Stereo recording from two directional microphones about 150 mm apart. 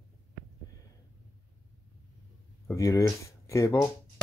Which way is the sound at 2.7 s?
20° left (ahead or behind).